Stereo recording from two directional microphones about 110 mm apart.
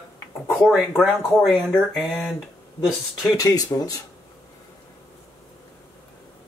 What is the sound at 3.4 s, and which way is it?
Speech, 35° left (ahead or behind).